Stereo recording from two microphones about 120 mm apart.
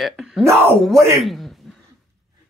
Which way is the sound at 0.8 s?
Centre (ahead or behind).